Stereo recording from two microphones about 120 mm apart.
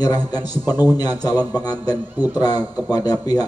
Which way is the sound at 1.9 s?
15° right (ahead or behind).